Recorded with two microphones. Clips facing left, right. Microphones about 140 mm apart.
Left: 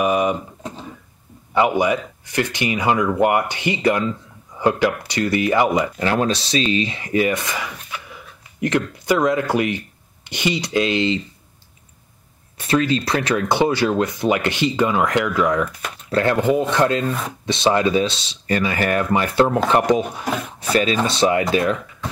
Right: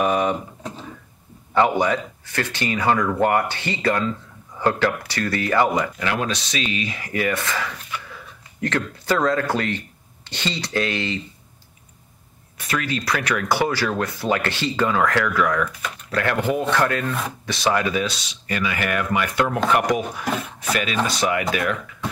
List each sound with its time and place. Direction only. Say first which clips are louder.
0.0 s speech: left 2 dB; 10° left (ahead or behind)
1.5 s speech: left 1 dB; 10° left (ahead or behind)
5.9 s speech: left 5 dB; 35° left (ahead or behind)
12.5 s speech: left 7 dB; 30° left (ahead or behind)